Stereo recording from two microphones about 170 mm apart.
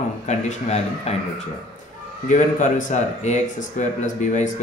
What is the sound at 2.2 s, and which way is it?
Speech, 45° left (ahead or behind).